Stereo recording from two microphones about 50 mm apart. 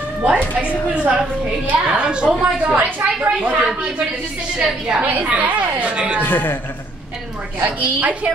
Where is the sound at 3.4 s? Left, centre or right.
Right.